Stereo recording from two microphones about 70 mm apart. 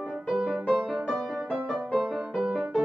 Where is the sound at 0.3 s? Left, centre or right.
Centre.